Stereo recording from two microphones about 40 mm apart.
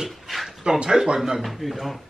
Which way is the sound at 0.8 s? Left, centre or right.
Right.